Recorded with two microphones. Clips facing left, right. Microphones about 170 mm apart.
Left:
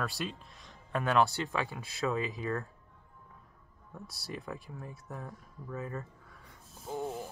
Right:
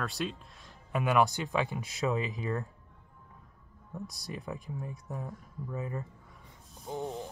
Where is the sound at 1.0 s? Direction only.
15° right (ahead or behind).